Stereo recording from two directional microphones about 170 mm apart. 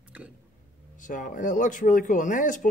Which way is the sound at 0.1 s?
10° right (ahead or behind).